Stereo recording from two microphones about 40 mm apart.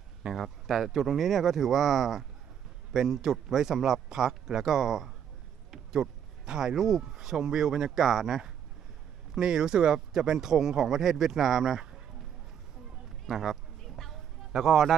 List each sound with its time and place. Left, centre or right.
0.3 s speech: centre
5.7 s a sound: centre
6.7 s speech: centre
13.3 s speech: centre
13.8 s a sound: centre
14.5 s speech: centre